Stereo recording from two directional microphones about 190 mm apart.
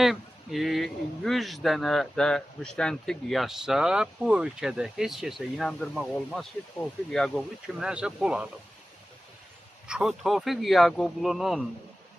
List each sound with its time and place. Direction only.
0.0 s speech: centre (ahead or behind)
9.8 s speech: 5° right (ahead or behind)